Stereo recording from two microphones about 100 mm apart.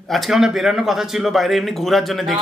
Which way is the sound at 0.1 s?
Centre (ahead or behind).